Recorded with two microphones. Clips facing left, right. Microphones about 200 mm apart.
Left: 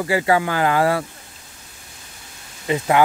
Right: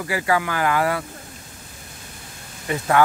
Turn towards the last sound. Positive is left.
turn(degrees=20)  # may be behind; listen again after turning